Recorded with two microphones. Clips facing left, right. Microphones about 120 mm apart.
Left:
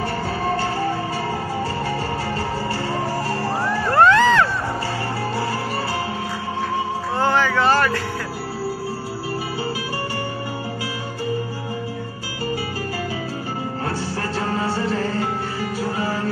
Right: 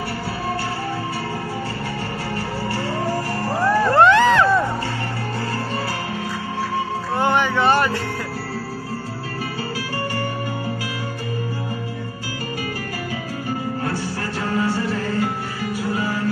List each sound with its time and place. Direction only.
3.9 s music: 20° right (ahead or behind)
7.2 s vehicle: 20° right (ahead or behind)
14.5 s music: 30° left (ahead or behind)